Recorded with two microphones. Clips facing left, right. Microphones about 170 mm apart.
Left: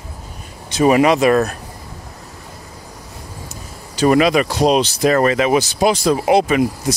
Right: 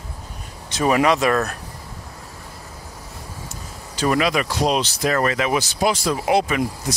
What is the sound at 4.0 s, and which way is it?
Speech, 25° left (ahead or behind).